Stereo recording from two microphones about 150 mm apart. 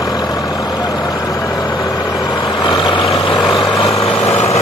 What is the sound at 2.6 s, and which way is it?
Vehicle, 30° left (ahead or behind).